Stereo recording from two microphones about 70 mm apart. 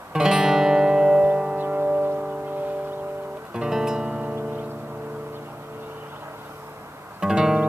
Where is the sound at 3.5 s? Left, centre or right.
Centre.